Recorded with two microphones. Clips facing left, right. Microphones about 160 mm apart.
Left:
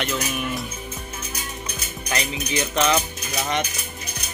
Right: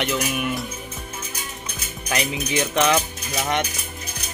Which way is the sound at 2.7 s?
10° right (ahead or behind).